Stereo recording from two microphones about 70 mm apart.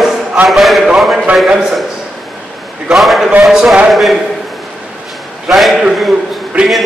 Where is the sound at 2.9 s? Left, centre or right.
Centre.